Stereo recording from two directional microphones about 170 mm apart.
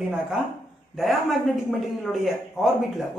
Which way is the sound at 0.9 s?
Centre (ahead or behind).